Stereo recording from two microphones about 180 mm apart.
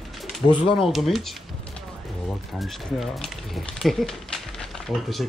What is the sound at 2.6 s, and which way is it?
Speech, centre (ahead or behind).